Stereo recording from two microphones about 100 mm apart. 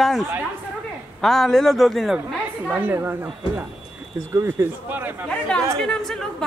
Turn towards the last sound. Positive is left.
turn(degrees=5)  # may be behind; listen again after turning